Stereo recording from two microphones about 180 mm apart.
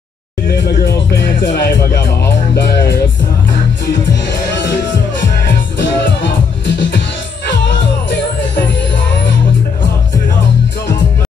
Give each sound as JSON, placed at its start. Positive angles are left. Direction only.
{"t": 0.5, "sound": "speech", "side_deg": 65}
{"t": 1.5, "sound": "music", "side_deg": 75}
{"t": 5.8, "sound": "music", "side_deg": 90}